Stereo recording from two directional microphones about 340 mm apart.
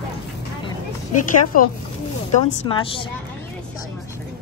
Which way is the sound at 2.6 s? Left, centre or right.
Centre.